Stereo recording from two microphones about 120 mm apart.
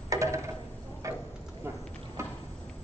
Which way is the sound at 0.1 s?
25° right (ahead or behind).